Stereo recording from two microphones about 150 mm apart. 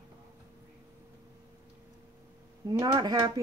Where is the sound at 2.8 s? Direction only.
30° right (ahead or behind).